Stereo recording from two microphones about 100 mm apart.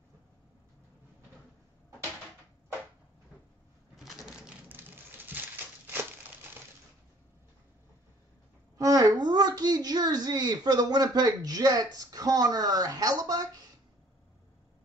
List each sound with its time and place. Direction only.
3.9 s cash register: centre (ahead or behind)
4.6 s a sound: 20° right (ahead or behind)
8.7 s speech: 35° right (ahead or behind)